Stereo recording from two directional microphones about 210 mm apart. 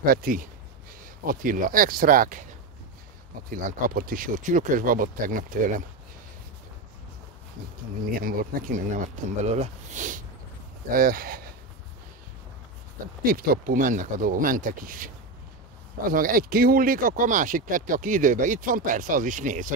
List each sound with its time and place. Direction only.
0.0 s speech: 45° right (ahead or behind)
3.4 s speech: 40° right (ahead or behind)
8.0 s speech: 45° right (ahead or behind)
13.2 s speech: 45° right (ahead or behind)
16.1 s speech: 40° right (ahead or behind)